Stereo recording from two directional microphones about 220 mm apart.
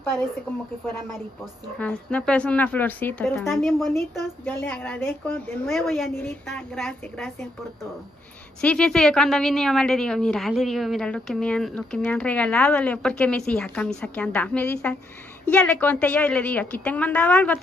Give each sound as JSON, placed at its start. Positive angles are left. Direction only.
{"t": 1.8, "sound": "a woman's voice", "side_deg": 5}
{"t": 8.5, "sound": "a woman's voice", "side_deg": 5}